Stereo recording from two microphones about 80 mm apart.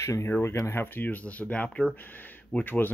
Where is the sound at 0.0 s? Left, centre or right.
Left; by 2.0 s centre.